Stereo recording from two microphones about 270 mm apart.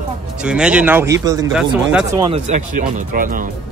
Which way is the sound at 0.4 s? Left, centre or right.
Centre.